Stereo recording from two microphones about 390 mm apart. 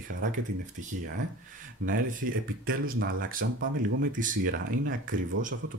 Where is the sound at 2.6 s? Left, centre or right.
Right.